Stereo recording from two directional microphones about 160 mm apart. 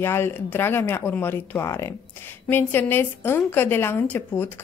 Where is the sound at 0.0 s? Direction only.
15° left (ahead or behind).